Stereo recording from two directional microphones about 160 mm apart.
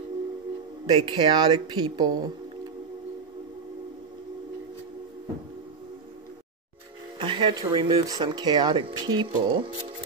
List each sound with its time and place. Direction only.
0.8 s speech: 25° right (ahead or behind)
7.2 s speech: 30° right (ahead or behind)